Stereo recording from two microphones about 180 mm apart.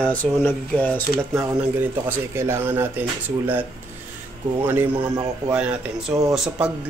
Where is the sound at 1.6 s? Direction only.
10° right (ahead or behind).